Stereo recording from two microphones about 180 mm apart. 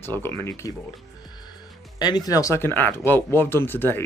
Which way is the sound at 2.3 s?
15° left (ahead or behind).